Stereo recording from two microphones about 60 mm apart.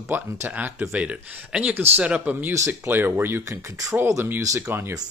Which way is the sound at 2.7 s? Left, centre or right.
Right.